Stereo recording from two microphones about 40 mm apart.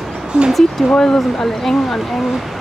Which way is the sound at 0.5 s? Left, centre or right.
Centre.